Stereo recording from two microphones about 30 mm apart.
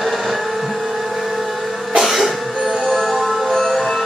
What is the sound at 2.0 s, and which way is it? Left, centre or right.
Music, centre.